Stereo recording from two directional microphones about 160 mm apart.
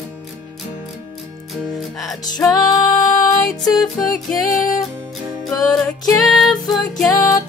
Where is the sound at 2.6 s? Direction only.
20° left (ahead or behind).